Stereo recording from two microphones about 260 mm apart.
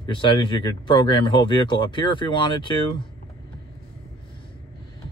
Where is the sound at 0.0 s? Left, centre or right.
Centre.